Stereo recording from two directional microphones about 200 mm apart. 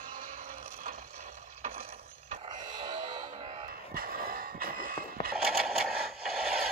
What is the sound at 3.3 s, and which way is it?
Music, 30° right (ahead or behind).